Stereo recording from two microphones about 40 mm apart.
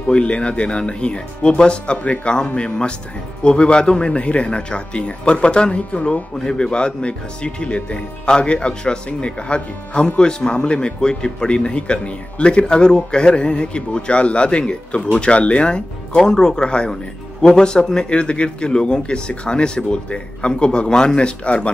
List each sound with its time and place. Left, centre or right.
0.1 s speech: left
6.3 s speech: centre
16.2 s speech: centre